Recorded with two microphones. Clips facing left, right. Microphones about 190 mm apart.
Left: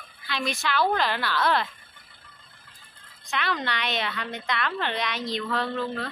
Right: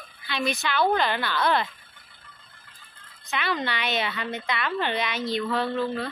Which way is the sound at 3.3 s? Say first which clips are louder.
Right 1 dB; centre (ahead or behind).